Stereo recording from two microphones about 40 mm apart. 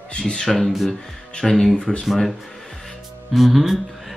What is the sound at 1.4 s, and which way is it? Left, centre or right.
Speech, centre.